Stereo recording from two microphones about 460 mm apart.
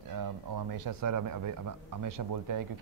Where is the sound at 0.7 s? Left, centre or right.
Right.